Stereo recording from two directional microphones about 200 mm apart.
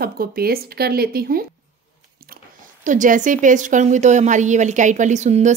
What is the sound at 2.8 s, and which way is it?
A woman's voice, 40° right (ahead or behind).